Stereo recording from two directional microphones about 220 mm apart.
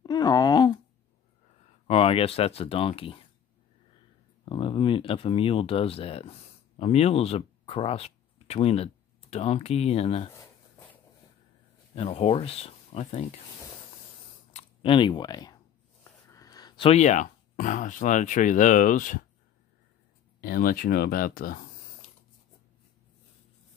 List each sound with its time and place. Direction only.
0.0 s a sound: 20° left (ahead or behind)
1.9 s speech: 25° left (ahead or behind)
4.5 s speech: 20° left (ahead or behind)
11.9 s speech: 25° left (ahead or behind)
14.5 s a sound: 25° left (ahead or behind)
20.3 s speech: 40° left (ahead or behind)